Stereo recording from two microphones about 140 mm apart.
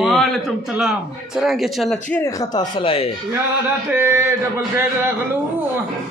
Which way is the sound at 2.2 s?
25° left (ahead or behind).